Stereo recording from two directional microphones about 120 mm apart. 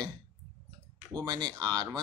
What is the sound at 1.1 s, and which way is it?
Speech, 35° right (ahead or behind).